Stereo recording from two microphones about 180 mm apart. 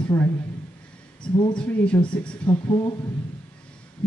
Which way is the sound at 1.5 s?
5° left (ahead or behind).